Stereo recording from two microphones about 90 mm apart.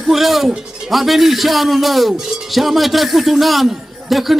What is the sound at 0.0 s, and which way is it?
Speech, centre (ahead or behind).